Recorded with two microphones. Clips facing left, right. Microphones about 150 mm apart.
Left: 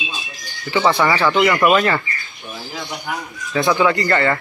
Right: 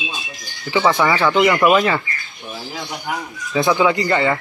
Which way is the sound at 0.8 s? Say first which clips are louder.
Even; centre (ahead or behind).